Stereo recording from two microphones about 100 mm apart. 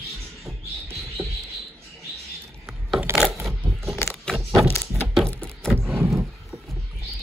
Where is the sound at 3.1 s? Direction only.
25° right (ahead or behind).